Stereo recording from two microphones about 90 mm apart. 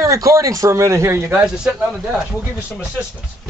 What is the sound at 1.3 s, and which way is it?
Speech, 15° right (ahead or behind).